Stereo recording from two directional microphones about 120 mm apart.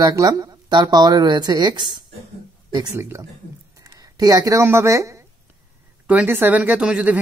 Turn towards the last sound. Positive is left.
turn(degrees=-10)  # may be behind; listen again after turning